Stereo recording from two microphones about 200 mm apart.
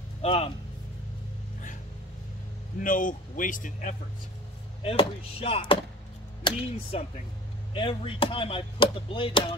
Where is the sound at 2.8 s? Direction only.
40° left (ahead or behind).